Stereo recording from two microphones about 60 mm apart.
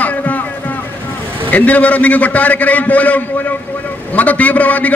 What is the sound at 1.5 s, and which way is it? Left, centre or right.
A man's voice, left.